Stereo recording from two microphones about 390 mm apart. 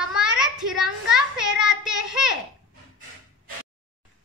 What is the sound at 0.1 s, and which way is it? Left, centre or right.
Child singing, centre.